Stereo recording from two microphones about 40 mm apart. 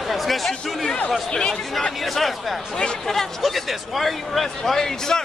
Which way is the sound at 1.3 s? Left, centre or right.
Centre.